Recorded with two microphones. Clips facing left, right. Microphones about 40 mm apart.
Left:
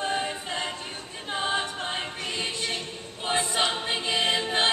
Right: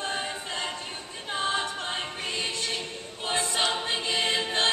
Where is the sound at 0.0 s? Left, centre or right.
Centre.